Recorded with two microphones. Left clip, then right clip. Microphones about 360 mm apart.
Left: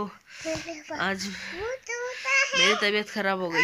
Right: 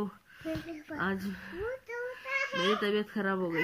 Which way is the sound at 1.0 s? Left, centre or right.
Centre.